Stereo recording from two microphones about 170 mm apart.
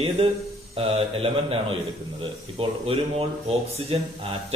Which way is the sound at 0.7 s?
35° right (ahead or behind).